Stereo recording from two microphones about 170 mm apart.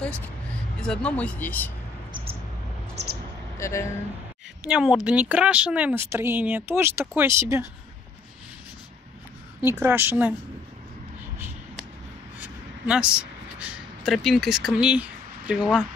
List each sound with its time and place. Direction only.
0.7 s speech: 5° left (ahead or behind)
3.5 s speech: 15° left (ahead or behind)
4.6 s speech: 5° right (ahead or behind)
9.6 s speech: 15° right (ahead or behind)
12.4 s a sound: 5° right (ahead or behind)